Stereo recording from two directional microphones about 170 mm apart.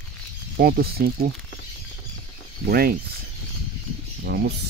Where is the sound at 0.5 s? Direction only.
60° right (ahead or behind).